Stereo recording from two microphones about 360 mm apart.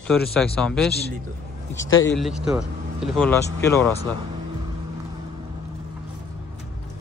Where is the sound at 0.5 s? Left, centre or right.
Centre.